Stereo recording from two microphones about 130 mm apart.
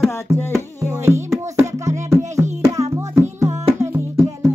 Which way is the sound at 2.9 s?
20° right (ahead or behind).